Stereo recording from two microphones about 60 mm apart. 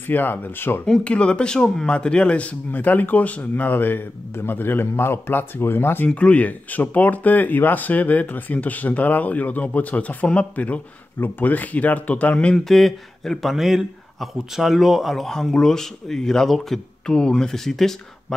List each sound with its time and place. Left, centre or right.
0.1 s speech: left
1.0 s speech: centre; by 6.0 s left
6.0 s speech: centre
12.6 s a man's voice: centre